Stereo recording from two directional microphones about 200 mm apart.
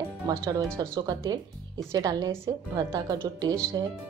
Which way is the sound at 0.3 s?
15° right (ahead or behind).